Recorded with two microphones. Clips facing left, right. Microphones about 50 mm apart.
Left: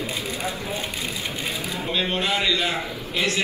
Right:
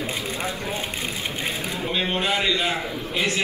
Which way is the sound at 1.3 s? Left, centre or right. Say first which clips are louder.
Right 1 dB; right.